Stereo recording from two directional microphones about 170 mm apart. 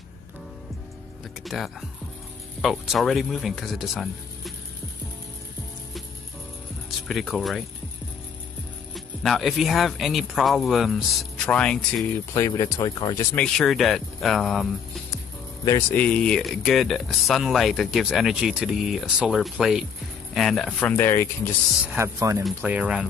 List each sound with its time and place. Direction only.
1.4 s speech: centre (ahead or behind)
7.1 s speech: centre (ahead or behind)
8.9 s speech: centre (ahead or behind)
12.4 s speech: 20° left (ahead or behind); by 14.7 s centre (ahead or behind)
15.9 s speech: 5° left (ahead or behind)
21.8 s speech: 15° right (ahead or behind)
22.4 s speech: 5° right (ahead or behind)